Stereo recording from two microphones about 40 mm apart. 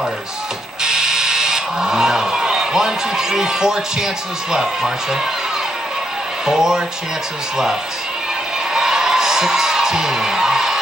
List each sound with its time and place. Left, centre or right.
0.8 s speech: centre
6.4 s speech: centre
8.7 s music: centre